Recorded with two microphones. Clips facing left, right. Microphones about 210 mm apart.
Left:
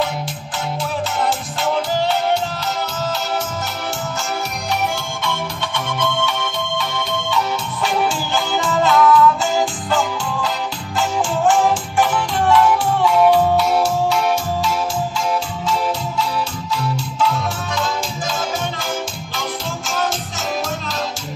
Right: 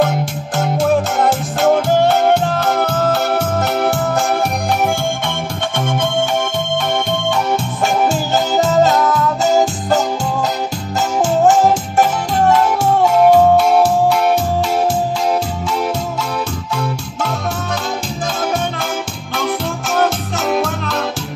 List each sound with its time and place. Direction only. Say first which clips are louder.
0.6 s music: right 9 dB; 50° right (ahead or behind)
19.3 s music: right 8 dB; 60° right (ahead or behind)